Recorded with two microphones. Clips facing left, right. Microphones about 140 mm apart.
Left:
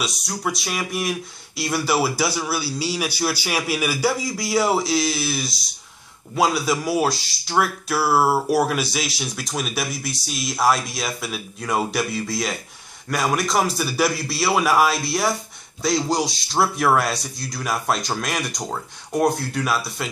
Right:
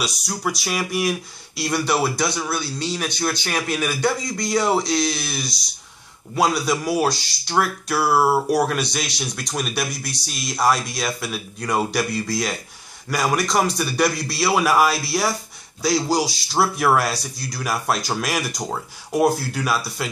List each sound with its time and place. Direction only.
0.0 s speech: centre (ahead or behind)